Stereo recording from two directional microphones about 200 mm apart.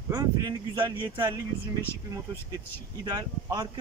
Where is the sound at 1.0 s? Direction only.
10° right (ahead or behind).